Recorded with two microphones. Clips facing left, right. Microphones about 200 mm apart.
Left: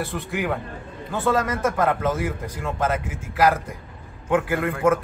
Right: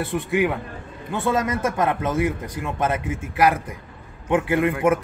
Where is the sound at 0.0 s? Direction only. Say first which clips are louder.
Right 5 dB; 20° right (ahead or behind).